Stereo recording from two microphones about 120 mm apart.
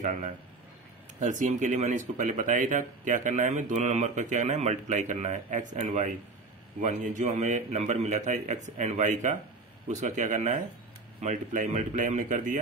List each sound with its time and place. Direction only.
1.2 s speech: 90° right